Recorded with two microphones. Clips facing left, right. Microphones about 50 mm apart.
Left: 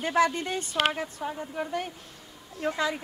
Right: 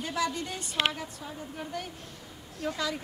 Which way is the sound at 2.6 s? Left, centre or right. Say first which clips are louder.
Left 4 dB; left.